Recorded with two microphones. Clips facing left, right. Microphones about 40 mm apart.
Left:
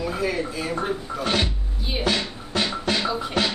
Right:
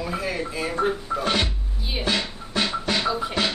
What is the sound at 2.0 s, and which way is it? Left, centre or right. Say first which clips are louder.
Music: left 1 dB; right.